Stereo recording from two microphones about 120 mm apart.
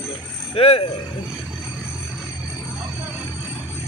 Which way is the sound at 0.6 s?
55° left (ahead or behind).